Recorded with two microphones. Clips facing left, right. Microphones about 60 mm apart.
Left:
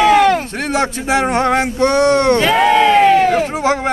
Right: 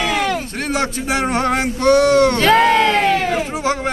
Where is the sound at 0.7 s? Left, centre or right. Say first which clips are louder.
Left 4 dB; left.